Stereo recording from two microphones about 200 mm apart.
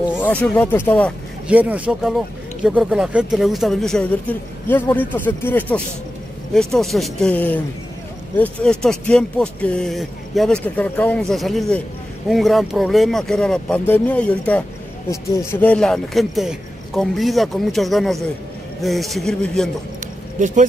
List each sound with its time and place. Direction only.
0.2 s speech: 10° left (ahead or behind)
1.5 s speech: 5° right (ahead or behind)
20.3 s speech: 40° right (ahead or behind)